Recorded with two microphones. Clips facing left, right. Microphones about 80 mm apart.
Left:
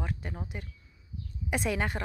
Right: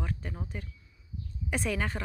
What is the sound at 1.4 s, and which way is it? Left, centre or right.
Speech, centre.